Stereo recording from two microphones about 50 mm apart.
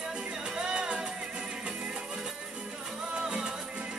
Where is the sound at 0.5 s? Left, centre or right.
Centre.